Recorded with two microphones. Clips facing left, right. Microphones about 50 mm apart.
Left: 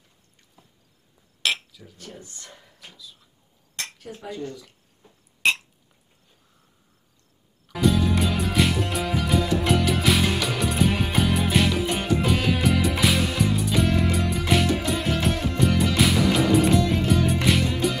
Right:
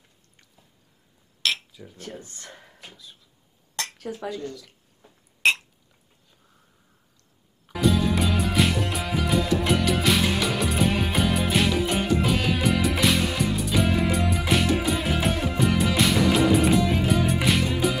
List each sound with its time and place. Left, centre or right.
2.1 s speech: right
4.3 s speech: left
7.7 s music: centre